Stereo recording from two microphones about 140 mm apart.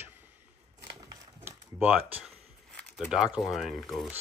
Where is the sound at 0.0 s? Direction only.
15° right (ahead or behind).